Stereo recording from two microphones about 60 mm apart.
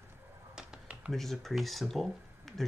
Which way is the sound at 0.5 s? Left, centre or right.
Centre.